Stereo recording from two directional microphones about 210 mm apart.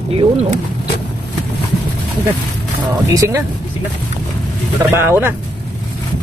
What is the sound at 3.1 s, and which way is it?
Speech, 15° right (ahead or behind).